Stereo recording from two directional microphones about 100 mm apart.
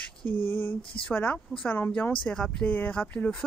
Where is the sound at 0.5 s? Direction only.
20° left (ahead or behind).